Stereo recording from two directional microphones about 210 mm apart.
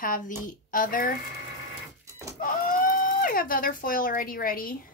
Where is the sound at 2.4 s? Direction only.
40° left (ahead or behind).